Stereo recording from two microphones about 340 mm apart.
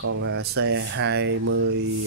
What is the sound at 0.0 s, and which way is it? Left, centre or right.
Speech, right.